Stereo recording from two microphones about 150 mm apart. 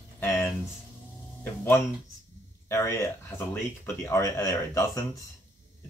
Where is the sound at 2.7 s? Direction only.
20° left (ahead or behind).